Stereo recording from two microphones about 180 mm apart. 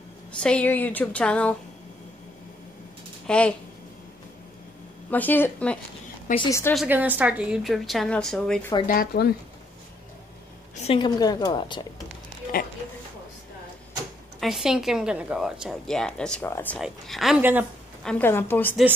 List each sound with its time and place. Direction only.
0.4 s a woman's voice: 5° left (ahead or behind)
3.3 s speech: 5° left (ahead or behind)
5.1 s a woman's voice: 10° left (ahead or behind)
6.7 s a woman's voice: 5° right (ahead or behind)
8.8 s speech: 50° left (ahead or behind)
10.8 s a woman's voice: 30° left (ahead or behind)
12.5 s a sound: 50° left (ahead or behind)
14.4 s a woman's voice: centre (ahead or behind)
16.8 s a woman's voice: centre (ahead or behind)
18.0 s a woman's voice: 10° left (ahead or behind)